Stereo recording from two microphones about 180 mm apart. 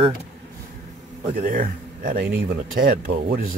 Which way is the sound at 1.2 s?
45° right (ahead or behind).